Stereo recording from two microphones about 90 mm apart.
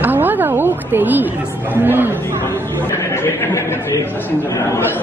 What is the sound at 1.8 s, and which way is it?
Speech, 20° right (ahead or behind).